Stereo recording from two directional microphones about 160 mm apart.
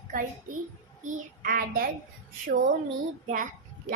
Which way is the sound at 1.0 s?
60° right (ahead or behind).